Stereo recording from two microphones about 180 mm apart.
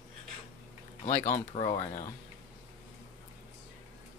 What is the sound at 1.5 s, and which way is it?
Speech, 35° left (ahead or behind).